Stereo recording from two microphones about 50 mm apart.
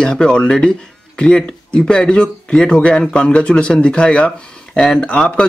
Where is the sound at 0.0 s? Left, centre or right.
Centre.